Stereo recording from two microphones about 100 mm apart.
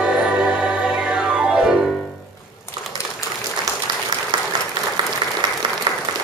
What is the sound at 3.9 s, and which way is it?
Applause, 45° right (ahead or behind).